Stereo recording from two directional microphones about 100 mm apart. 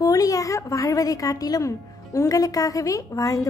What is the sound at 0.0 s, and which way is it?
A woman's voice, 35° left (ahead or behind).